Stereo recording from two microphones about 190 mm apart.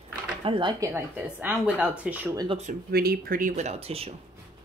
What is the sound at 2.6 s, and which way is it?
Speech, 50° right (ahead or behind).